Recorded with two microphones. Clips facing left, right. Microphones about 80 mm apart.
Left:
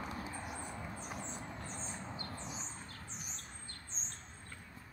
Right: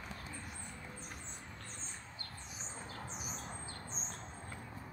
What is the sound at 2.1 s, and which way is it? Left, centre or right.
Bird, left.